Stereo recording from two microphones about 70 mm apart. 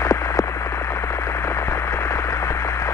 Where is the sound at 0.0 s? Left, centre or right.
Left.